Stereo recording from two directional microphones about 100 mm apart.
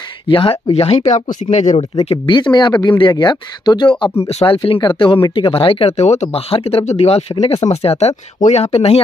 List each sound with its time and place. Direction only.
0.3 s speech: 60° left (ahead or behind)
1.8 s speech: 90° left
2.3 s speech: 50° left (ahead or behind)
4.3 s speech: 90° left
4.6 s speech: 55° left (ahead or behind); by 9.0 s 90° left